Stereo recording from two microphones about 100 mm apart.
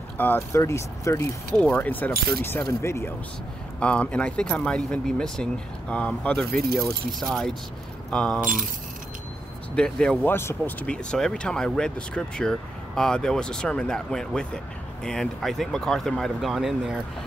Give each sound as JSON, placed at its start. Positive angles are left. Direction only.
{"t": 0.2, "sound": "speech", "side_deg": 20}
{"t": 0.6, "sound": "speech", "side_deg": 30}
{"t": 1.6, "sound": "speech", "side_deg": 15}
{"t": 3.8, "sound": "speech", "side_deg": 10}
{"t": 7.1, "sound": "speech", "side_deg": 0}
{"t": 9.8, "sound": "speech", "side_deg": 10}
{"t": 10.2, "sound": "speech", "side_deg": 25}
{"t": 10.9, "sound": "speech", "side_deg": 5}